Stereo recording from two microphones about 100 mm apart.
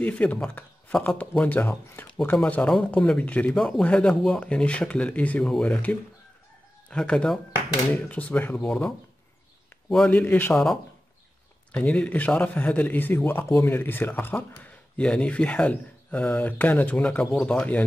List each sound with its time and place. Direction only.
0.0 s a man's voice: 15° left (ahead or behind)
10.0 s speech: 20° left (ahead or behind)
10.5 s a man's voice: 5° left (ahead or behind)